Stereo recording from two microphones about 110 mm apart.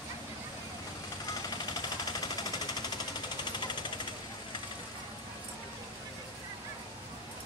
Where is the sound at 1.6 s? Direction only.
40° left (ahead or behind).